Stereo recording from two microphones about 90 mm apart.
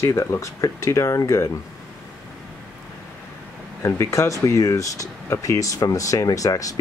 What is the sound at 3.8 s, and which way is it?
Speech, 30° left (ahead or behind).